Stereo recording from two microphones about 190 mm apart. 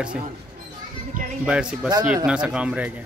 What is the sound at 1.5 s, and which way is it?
Speech, 5° right (ahead or behind).